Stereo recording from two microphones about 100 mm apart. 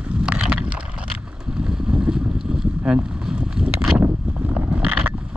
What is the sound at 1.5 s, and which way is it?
Boat, 5° right (ahead or behind).